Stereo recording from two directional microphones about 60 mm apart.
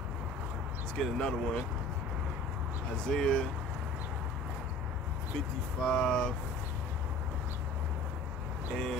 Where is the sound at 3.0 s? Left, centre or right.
Centre.